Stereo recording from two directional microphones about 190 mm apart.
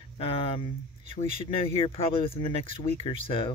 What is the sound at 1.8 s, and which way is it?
Speech, 30° left (ahead or behind).